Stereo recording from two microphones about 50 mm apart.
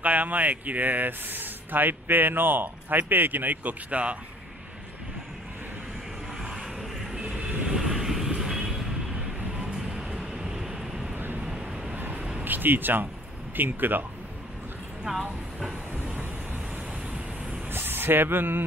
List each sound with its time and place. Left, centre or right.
0.0 s speech: right
6.4 s vehicle: centre
7.2 s vehicle: centre
12.0 s a sound: right
12.4 s speech: right
17.6 s speech: right